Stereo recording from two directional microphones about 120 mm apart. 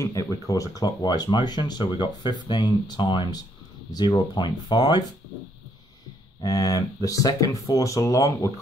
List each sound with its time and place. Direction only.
0.0 s speech: 30° left (ahead or behind)
6.4 s speech: 30° left (ahead or behind)